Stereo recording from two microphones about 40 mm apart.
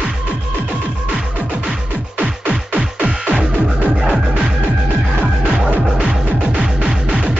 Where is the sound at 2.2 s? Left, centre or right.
Right.